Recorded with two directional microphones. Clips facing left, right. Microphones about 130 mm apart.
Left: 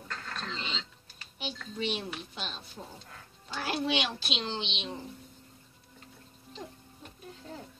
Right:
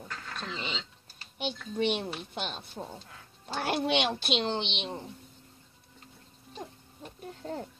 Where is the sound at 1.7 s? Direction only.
55° right (ahead or behind).